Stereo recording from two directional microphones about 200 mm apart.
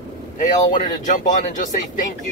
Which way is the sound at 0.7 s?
40° left (ahead or behind).